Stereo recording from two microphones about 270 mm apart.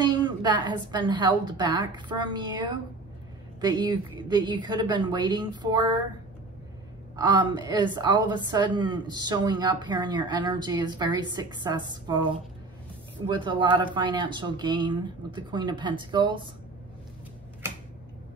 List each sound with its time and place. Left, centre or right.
0.0 s a woman's voice: centre
7.2 s a woman's voice: centre
13.3 s a woman's voice: centre